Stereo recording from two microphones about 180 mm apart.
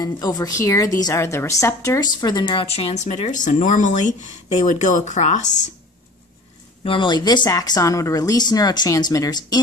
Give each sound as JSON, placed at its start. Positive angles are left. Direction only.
{"t": 0.0, "sound": "a woman's voice", "side_deg": 20}
{"t": 6.8, "sound": "speech", "side_deg": 30}